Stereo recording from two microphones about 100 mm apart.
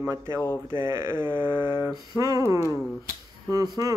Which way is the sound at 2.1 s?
35° right (ahead or behind).